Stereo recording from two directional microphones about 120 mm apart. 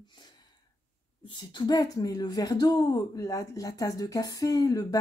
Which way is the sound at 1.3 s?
40° left (ahead or behind).